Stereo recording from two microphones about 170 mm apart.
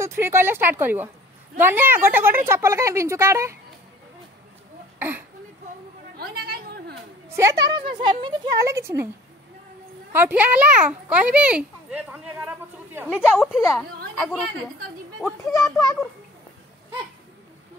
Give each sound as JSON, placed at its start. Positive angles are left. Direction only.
{"t": 0.0, "sound": "a child's voice", "side_deg": -15}
{"t": 4.9, "sound": "a sound", "side_deg": -10}
{"t": 6.1, "sound": "chatter", "side_deg": -65}
{"t": 7.2, "sound": "a sound", "side_deg": -15}
{"t": 7.7, "sound": "speech", "side_deg": -30}
{"t": 8.6, "sound": "a child's voice", "side_deg": -15}
{"t": 10.1, "sound": "a child's voice", "side_deg": -10}
{"t": 15.2, "sound": "a child's voice", "side_deg": 15}